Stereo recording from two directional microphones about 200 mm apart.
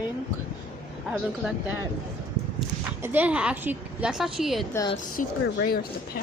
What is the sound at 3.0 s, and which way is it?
A woman's voice, 10° right (ahead or behind).